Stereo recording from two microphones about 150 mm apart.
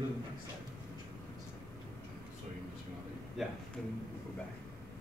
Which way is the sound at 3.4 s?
Centre (ahead or behind).